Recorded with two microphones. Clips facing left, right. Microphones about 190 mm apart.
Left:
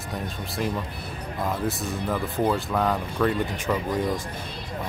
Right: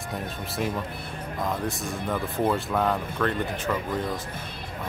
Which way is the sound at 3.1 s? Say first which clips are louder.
Left 3 dB; 10° left (ahead or behind).